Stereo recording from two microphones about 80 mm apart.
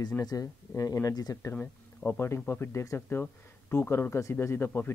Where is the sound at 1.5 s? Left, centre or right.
Left.